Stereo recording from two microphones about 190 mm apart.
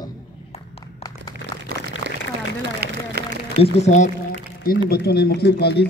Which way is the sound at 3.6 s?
35° left (ahead or behind).